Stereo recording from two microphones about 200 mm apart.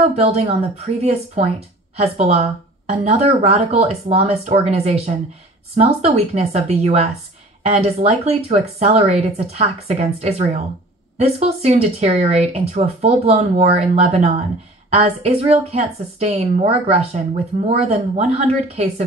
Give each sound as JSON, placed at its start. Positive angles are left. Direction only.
{"t": 0.0, "sound": "a woman's voice", "side_deg": -30}